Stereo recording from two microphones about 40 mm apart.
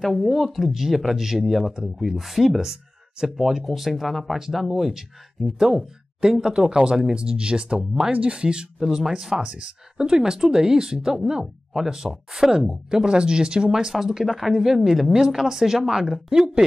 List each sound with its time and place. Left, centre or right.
0.2 s speech: centre
0.5 s speech: centre
3.3 s speech: centre
6.5 s speech: centre
8.1 s speech: right; by 15.1 s centre
15.1 s speech: centre